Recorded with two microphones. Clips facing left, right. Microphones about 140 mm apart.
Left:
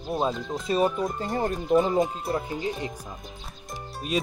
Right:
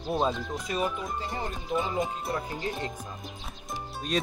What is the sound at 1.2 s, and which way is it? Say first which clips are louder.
Speech: left 7 dB; 50° left (ahead or behind).